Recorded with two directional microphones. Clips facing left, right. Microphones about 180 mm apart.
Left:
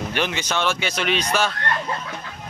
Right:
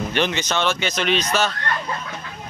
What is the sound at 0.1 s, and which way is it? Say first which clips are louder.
A man's voice: right 2 dB; 10° left (ahead or behind).